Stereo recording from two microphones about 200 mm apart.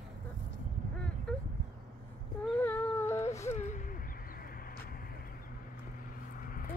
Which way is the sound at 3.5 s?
35° left (ahead or behind).